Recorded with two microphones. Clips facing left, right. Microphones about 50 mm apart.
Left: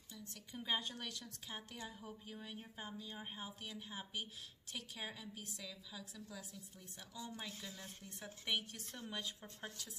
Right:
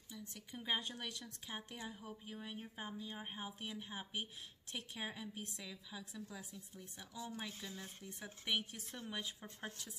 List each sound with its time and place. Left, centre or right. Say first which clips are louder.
0.1 s a woman's voice: right 1 dB; centre
7.0 s a woman's voice: right 2 dB; centre